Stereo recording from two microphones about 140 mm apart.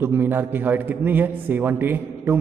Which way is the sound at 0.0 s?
15° right (ahead or behind).